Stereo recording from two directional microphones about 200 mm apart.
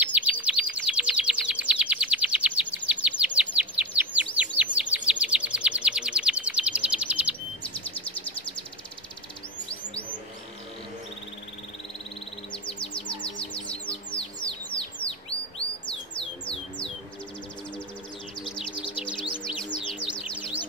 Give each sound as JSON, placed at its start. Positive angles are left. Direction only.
{"t": 0.0, "sound": "bird", "side_deg": -5}
{"t": 12.6, "sound": "chirp", "side_deg": 25}
{"t": 13.7, "sound": "bird", "side_deg": 5}
{"t": 18.4, "sound": "music", "side_deg": 25}